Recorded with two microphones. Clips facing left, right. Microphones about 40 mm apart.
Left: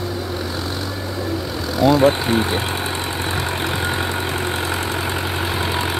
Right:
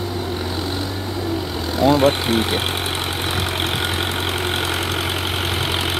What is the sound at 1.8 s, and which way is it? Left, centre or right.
Vehicle, right.